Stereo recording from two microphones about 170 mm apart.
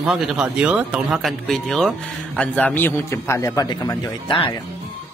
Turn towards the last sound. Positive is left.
turn(degrees=30)  # may be behind; listen again after turning